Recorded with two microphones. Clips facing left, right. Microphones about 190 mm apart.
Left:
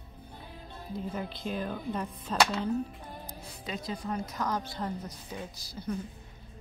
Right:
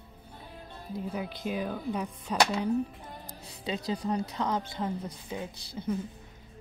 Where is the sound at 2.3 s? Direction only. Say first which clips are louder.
Right 1 dB; 15° right (ahead or behind).